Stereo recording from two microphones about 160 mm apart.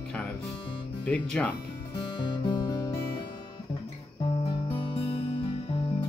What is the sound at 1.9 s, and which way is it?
Music, 30° left (ahead or behind).